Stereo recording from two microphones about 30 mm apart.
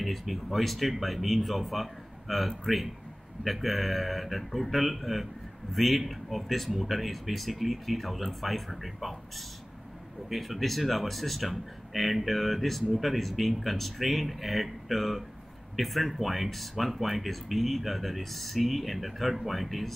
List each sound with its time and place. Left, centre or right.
0.0 s speech: centre
10.3 s speech: centre